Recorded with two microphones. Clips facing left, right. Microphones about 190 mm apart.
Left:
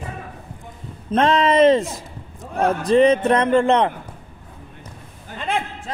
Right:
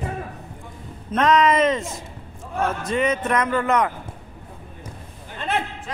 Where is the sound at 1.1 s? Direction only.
30° left (ahead or behind).